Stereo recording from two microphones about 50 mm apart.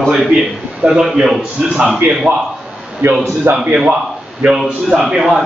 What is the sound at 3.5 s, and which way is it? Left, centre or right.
Speech, right.